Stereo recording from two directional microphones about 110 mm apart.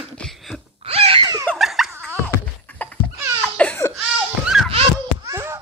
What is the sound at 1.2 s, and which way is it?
Baby laughter, 35° right (ahead or behind).